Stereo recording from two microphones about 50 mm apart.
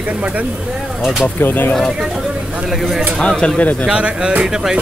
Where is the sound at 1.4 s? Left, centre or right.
Left.